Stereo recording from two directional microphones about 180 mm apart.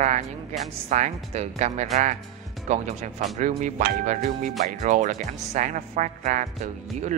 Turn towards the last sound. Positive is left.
turn(degrees=-40)  # may be behind; listen again after turning